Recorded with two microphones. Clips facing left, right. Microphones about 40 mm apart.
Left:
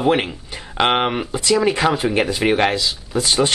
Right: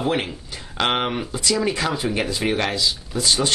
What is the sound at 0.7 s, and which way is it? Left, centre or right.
Speech, left.